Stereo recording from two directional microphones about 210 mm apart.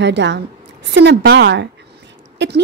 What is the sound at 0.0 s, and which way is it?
A woman's voice, 55° right (ahead or behind).